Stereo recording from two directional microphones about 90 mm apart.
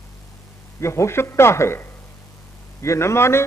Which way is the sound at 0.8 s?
30° left (ahead or behind).